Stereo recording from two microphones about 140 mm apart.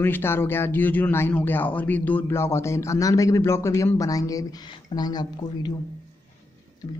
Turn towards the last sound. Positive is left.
turn(degrees=30)  # may be behind; listen again after turning